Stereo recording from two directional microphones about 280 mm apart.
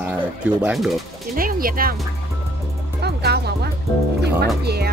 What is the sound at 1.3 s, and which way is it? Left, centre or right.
Speech, right.